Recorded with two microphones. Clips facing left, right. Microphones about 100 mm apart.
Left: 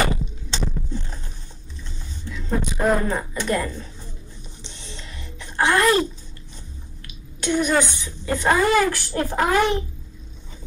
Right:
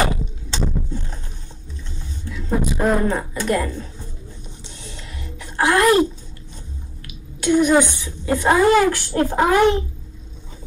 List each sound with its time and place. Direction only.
0.0 s a sound: 10° right (ahead or behind)
2.2 s speech: 10° right (ahead or behind)
4.6 s music: 10° right (ahead or behind)
7.4 s a woman's voice: 15° right (ahead or behind)